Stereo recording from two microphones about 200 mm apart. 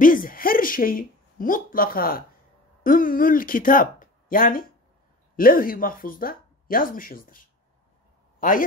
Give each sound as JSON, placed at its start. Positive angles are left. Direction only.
{"t": 0.0, "sound": "a woman's voice", "side_deg": 45}